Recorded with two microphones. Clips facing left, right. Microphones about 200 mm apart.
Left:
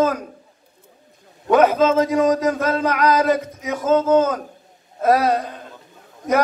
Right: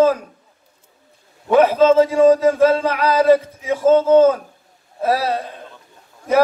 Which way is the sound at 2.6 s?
50° left (ahead or behind).